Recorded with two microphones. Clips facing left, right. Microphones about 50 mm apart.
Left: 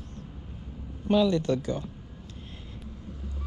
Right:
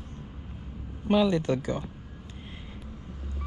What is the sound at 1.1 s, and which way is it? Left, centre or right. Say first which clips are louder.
Speech: even; right.